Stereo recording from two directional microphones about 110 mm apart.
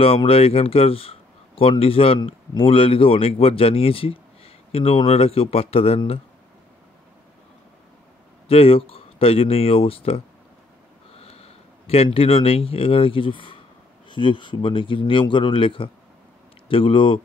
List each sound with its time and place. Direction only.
0.0 s a man's voice: 60° left (ahead or behind)
8.5 s speech: 60° left (ahead or behind)